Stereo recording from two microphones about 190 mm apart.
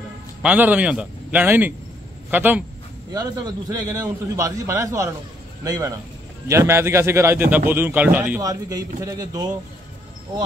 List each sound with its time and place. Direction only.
0.4 s a man's voice: 10° right (ahead or behind)
3.1 s a man's voice: 20° right (ahead or behind)